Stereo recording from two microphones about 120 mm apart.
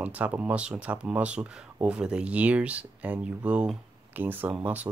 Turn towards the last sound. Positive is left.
turn(degrees=-15)  # may be behind; listen again after turning